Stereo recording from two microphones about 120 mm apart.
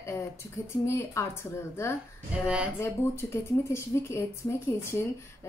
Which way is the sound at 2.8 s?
20° left (ahead or behind).